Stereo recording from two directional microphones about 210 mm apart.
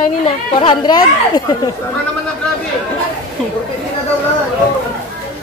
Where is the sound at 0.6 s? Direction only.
20° left (ahead or behind).